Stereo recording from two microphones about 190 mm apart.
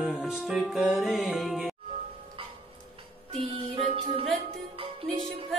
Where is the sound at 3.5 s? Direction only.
30° right (ahead or behind).